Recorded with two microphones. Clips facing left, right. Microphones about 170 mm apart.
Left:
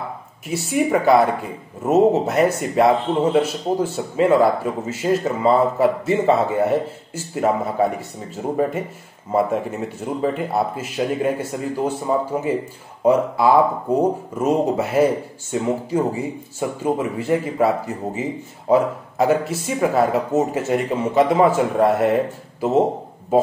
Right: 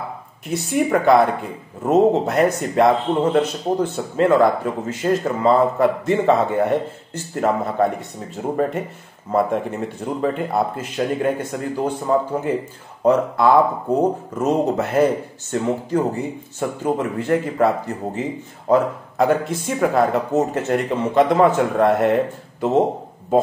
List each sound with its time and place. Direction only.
0.5 s speech: 5° left (ahead or behind)